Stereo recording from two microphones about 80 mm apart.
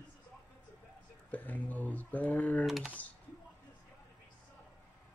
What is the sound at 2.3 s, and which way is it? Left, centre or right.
Typing, centre.